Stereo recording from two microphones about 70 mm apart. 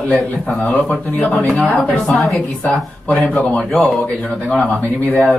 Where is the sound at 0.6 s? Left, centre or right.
Left.